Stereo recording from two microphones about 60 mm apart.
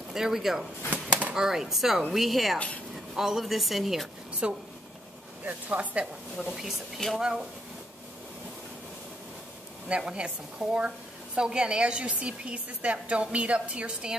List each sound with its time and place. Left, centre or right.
0.1 s speech: centre
4.4 s a woman's voice: centre
6.3 s a woman's voice: centre
9.8 s a woman's voice: centre